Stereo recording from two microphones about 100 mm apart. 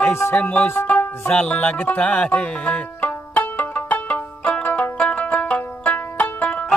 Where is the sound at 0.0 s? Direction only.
25° left (ahead or behind).